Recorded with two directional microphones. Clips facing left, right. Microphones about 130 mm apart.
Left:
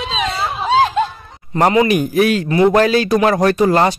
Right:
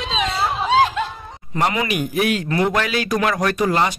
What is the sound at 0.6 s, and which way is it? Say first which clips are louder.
Music: left 4 dB; 35° left (ahead or behind).